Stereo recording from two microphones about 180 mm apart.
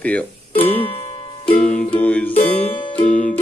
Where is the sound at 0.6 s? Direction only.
35° left (ahead or behind).